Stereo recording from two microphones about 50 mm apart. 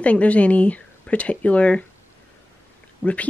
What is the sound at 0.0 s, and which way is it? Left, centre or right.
Speech, left.